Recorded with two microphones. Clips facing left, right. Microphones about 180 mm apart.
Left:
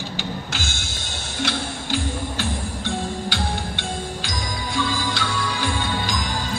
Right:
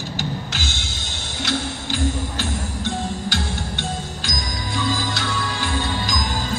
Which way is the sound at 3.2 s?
45° right (ahead or behind).